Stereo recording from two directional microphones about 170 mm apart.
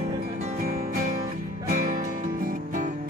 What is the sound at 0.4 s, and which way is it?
Music, 50° right (ahead or behind).